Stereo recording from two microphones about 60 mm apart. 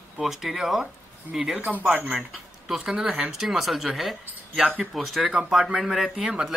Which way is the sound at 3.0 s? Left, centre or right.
Centre.